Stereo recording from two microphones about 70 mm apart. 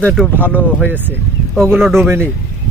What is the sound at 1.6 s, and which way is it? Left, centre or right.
Speech, centre.